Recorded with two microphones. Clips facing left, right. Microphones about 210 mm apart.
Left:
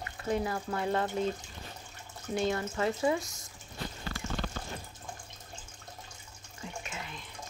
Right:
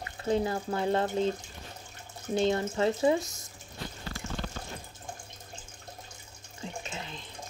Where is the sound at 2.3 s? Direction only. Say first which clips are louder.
Right 4 dB; 30° right (ahead or behind).